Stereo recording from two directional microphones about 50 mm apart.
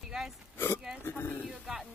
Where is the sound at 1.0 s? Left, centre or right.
Left.